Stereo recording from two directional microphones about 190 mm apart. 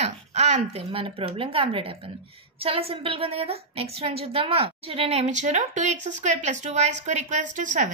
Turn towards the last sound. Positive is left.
turn(degrees=-40)  # may be behind; listen again after turning